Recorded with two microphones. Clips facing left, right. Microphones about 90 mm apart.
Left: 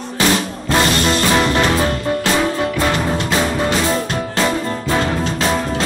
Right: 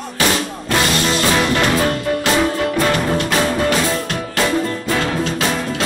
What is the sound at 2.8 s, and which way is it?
Music, 25° left (ahead or behind).